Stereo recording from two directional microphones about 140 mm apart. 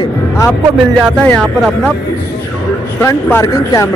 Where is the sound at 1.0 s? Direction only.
5° left (ahead or behind).